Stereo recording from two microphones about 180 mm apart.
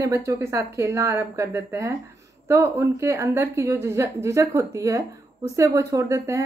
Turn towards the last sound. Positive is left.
turn(degrees=-15)  # may be behind; listen again after turning